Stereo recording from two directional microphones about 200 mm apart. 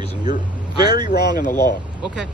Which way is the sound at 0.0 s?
20° right (ahead or behind).